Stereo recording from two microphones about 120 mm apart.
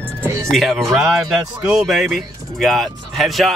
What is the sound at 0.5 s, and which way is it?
Speech, centre (ahead or behind).